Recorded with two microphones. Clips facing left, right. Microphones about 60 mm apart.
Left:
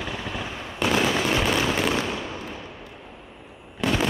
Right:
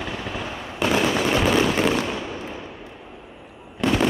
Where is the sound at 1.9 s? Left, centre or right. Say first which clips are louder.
Right 2 dB; right.